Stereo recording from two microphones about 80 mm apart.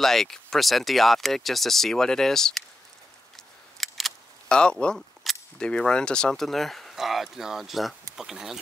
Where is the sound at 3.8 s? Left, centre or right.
Centre.